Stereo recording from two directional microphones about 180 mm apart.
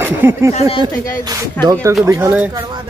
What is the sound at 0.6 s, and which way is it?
Speech, 30° left (ahead or behind).